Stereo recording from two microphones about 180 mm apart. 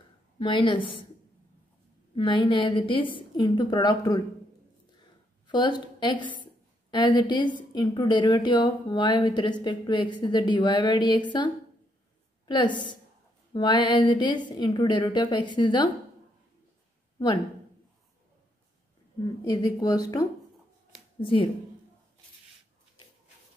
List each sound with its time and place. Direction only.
0.4 s a woman's voice: 30° left (ahead or behind)
2.1 s a woman's voice: 25° left (ahead or behind)
5.5 s a woman's voice: 25° left (ahead or behind)
19.4 s a woman's voice: 20° left (ahead or behind)